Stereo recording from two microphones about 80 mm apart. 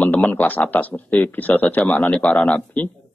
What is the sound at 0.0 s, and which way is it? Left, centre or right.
A man's voice, centre.